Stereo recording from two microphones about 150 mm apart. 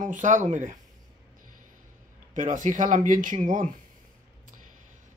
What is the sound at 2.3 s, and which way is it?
Speech, 60° right (ahead or behind).